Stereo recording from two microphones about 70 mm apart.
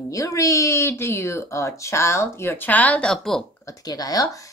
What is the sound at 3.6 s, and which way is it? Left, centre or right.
Speech, left.